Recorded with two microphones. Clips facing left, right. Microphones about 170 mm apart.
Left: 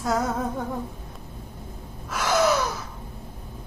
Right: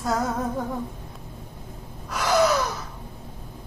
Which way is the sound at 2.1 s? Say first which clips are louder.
Right 1 dB; centre (ahead or behind).